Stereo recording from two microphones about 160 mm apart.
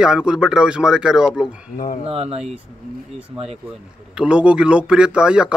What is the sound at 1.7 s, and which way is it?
Speech, 55° left (ahead or behind).